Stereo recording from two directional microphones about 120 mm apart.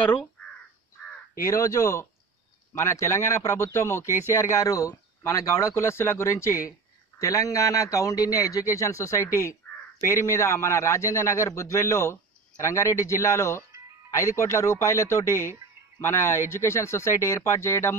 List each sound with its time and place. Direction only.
1.4 s a man's voice: 25° left (ahead or behind)